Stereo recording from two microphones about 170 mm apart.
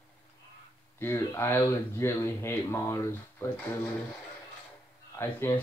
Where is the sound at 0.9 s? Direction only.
15° left (ahead or behind).